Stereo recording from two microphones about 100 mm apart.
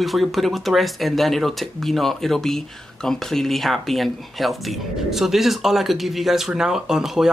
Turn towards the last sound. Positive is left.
turn(degrees=-5)  # may be behind; listen again after turning